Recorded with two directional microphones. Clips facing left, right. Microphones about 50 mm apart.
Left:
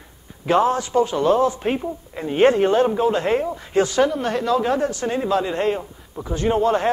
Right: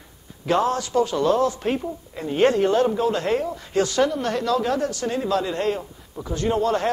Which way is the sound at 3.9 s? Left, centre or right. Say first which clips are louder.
Left 2 dB; centre.